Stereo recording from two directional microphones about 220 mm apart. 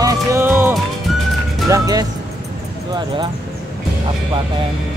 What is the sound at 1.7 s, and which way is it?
Speech, 15° right (ahead or behind).